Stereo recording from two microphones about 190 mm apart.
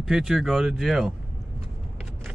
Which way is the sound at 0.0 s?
Centre (ahead or behind).